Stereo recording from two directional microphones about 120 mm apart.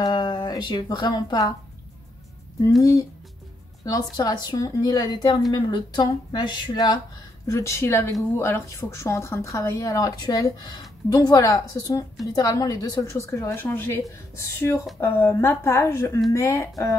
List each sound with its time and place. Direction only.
0.0 s speech: 35° left (ahead or behind)
2.8 s a woman's voice: 25° left (ahead or behind)
7.4 s a woman's voice: 25° left (ahead or behind)